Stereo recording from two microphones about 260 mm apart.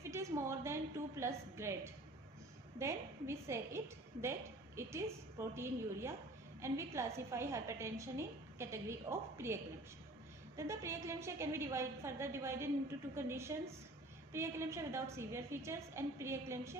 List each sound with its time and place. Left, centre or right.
0.0 s a woman's voice: centre
2.8 s a woman's voice: centre